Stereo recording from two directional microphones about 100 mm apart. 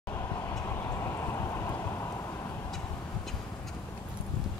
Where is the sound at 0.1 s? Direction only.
25° left (ahead or behind).